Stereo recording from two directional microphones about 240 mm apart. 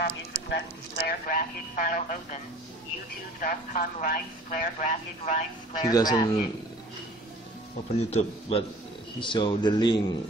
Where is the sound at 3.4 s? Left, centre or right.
Left.